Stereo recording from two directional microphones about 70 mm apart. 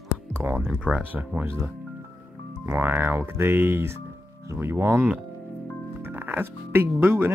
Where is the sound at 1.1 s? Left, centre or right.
Right.